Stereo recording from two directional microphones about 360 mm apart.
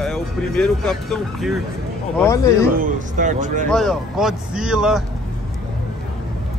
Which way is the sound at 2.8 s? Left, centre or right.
Right.